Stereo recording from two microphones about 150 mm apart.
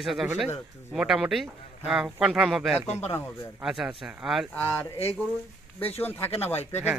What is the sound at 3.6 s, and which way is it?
Speech, centre (ahead or behind).